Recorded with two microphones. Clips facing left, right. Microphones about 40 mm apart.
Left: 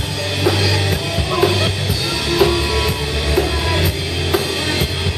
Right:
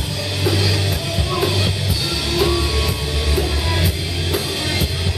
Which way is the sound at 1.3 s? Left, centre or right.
Centre.